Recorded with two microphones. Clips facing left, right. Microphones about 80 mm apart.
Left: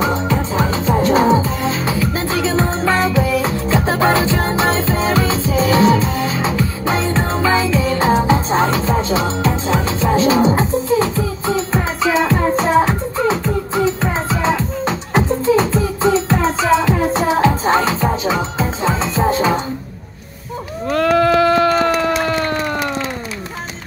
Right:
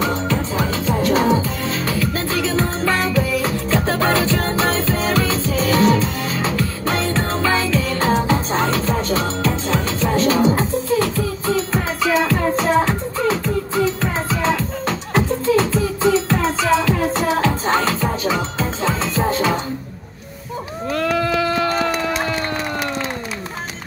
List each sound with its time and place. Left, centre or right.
0.0 s music: centre
20.9 s sheep: left
21.6 s a sound: left